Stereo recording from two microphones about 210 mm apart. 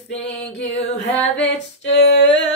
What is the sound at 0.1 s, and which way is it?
Music, 30° left (ahead or behind).